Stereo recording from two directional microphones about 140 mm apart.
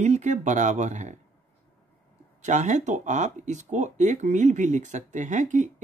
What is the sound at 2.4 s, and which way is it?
Speech, 60° right (ahead or behind).